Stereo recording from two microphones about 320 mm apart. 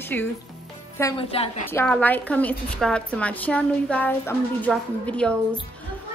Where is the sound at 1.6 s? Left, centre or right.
Centre.